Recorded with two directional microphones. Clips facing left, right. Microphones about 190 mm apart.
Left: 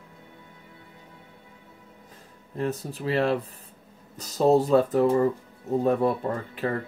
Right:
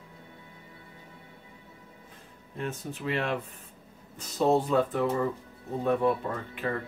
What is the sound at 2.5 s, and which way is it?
Speech, 35° left (ahead or behind).